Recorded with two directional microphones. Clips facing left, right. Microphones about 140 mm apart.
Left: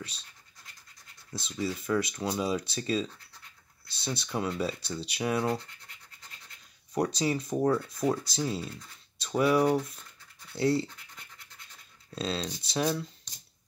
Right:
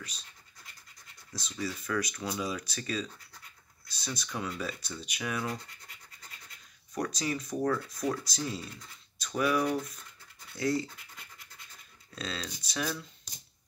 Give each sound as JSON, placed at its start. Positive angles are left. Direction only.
{"t": 1.3, "sound": "speech", "side_deg": 25}
{"t": 6.9, "sound": "speech", "side_deg": 30}
{"t": 12.2, "sound": "speech", "side_deg": 25}